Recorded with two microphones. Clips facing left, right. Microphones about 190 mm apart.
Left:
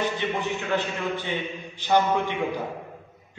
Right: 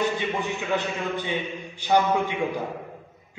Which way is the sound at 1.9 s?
10° right (ahead or behind).